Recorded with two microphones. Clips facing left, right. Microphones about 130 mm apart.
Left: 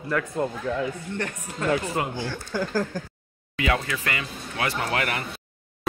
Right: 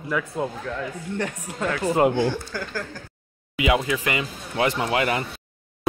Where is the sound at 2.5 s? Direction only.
25° left (ahead or behind).